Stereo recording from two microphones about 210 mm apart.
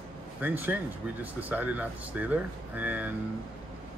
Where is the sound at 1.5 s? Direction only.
5° right (ahead or behind).